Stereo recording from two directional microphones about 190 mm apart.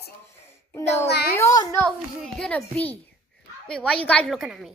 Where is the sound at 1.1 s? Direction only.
55° left (ahead or behind).